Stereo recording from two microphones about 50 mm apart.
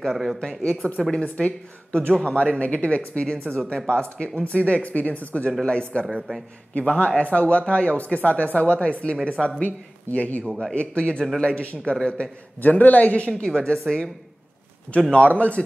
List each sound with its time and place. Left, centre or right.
0.0 s speech: centre
0.6 s speech: left
10.4 s speech: centre
10.7 s speech: left
12.6 s speech: left
13.4 s a woman's voice: centre
15.1 s speech: left